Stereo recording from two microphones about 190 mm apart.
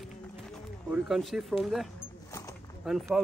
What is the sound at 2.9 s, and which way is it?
Speech, centre (ahead or behind).